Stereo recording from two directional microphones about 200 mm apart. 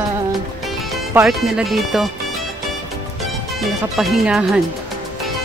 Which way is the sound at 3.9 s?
Centre (ahead or behind).